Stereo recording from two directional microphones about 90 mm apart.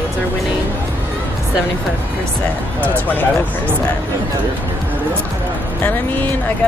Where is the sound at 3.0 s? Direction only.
20° left (ahead or behind).